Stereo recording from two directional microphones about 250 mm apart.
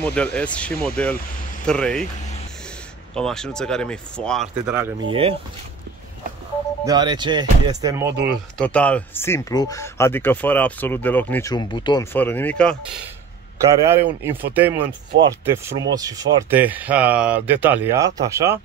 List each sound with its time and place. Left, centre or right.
0.0 s speech: centre
3.2 s speech: centre
6.8 s speech: centre
8.5 s speech: centre
13.8 s speech: centre